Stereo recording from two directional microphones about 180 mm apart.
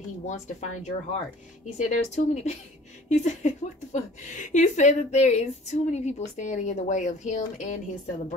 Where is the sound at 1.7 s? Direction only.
40° left (ahead or behind).